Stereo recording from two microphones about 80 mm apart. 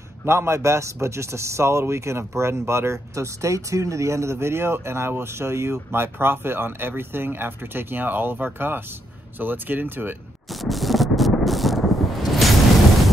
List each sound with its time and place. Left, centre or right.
0.2 s speech: right
10.5 s thunder: centre